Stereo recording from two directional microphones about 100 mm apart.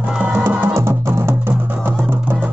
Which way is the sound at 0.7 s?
25° right (ahead or behind).